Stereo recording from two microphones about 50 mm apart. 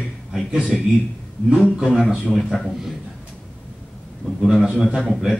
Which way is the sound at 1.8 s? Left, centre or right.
Centre.